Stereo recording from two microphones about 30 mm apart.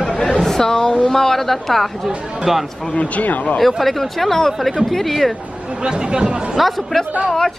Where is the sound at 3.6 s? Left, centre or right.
Centre.